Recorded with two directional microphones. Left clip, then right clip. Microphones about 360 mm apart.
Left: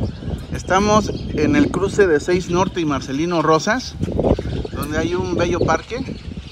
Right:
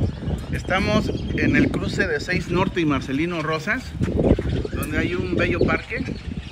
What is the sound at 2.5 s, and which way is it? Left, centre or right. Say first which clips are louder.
Speech: left 3 dB; centre.